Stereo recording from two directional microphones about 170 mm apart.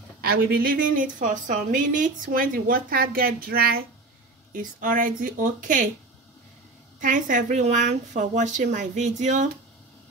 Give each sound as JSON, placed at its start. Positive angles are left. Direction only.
{"t": 0.3, "sound": "a woman's voice", "side_deg": -55}
{"t": 7.0, "sound": "speech", "side_deg": -50}